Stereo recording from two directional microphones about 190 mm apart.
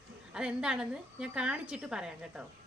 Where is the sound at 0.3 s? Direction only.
5° right (ahead or behind).